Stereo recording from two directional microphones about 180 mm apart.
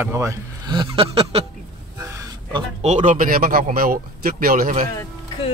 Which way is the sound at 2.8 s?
45° right (ahead or behind).